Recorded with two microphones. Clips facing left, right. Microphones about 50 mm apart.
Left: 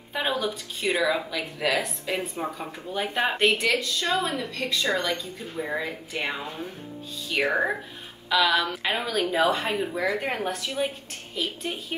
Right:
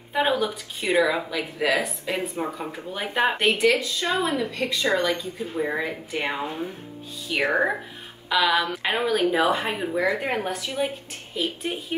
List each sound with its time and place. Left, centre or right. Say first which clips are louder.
0.1 s speech: right 4 dB; centre